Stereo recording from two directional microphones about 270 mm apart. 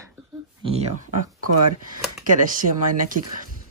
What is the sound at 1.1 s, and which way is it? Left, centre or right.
Speech, right.